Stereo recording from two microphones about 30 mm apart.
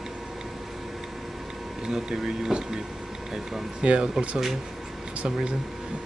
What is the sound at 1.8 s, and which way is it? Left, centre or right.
Speech, centre.